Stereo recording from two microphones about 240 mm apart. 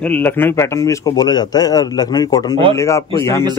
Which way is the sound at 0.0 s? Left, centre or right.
Centre.